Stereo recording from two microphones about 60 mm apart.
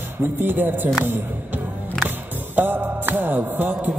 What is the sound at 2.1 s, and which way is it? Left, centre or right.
Music, right.